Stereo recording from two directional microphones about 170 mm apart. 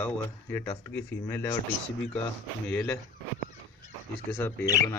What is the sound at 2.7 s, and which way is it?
Speech, 10° left (ahead or behind).